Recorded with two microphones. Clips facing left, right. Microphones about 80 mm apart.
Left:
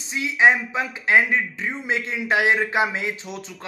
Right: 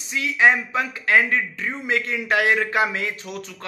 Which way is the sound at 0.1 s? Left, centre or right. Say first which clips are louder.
Even; left.